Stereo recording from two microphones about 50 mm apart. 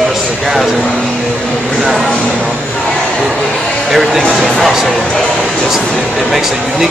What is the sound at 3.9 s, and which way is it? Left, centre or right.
Speech, centre.